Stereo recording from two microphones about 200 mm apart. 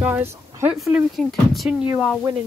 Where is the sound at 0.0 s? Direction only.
10° right (ahead or behind).